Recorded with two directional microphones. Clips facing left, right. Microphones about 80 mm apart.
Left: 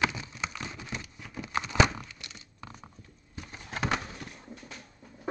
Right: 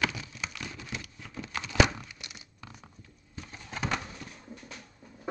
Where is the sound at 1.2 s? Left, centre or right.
Centre.